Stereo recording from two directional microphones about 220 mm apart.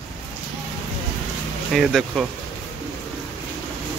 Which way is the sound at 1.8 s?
Centre (ahead or behind).